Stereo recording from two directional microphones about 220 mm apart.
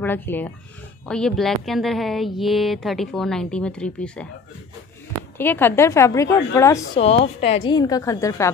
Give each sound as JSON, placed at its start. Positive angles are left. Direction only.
{"t": 0.0, "sound": "a woman's voice", "side_deg": 10}
{"t": 5.4, "sound": "a woman's voice", "side_deg": 10}
{"t": 7.0, "sound": "a woman's voice", "side_deg": 30}